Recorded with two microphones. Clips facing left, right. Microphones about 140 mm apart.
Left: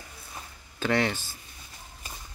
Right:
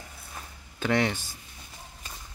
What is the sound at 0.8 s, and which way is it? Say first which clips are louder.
Speech: even; 15° right (ahead or behind).